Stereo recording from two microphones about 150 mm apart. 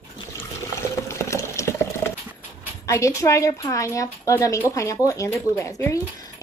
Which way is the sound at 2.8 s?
20° left (ahead or behind).